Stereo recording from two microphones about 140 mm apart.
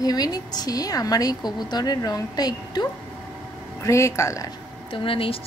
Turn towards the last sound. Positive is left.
turn(degrees=40)  # may be behind; listen again after turning